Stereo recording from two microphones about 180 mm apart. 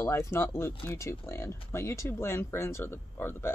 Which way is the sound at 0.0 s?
15° left (ahead or behind).